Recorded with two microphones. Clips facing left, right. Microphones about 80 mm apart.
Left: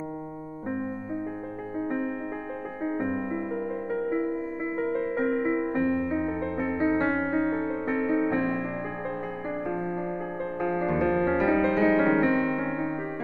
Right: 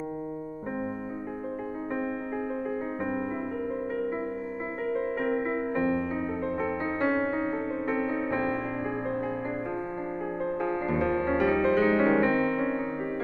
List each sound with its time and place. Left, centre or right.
5.8 s music: centre
10.6 s music: centre
12.0 s music: centre